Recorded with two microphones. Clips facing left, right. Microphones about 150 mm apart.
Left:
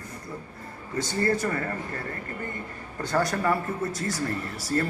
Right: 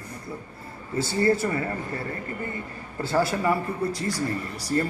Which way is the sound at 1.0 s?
10° right (ahead or behind).